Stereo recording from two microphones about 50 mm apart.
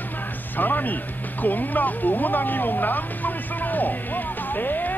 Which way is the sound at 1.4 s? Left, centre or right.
Left.